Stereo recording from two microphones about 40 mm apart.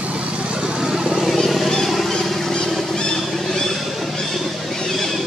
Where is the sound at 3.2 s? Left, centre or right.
Centre.